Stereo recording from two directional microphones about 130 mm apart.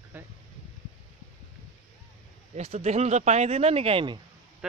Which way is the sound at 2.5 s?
55° right (ahead or behind).